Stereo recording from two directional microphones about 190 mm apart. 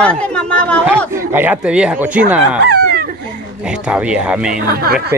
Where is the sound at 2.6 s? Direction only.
60° right (ahead or behind).